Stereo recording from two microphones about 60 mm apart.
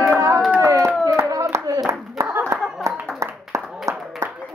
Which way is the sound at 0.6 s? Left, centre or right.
Right.